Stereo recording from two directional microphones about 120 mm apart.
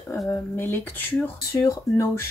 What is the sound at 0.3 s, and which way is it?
Speech, 20° left (ahead or behind).